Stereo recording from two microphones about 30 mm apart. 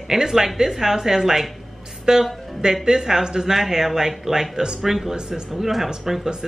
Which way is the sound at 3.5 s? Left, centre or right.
Centre.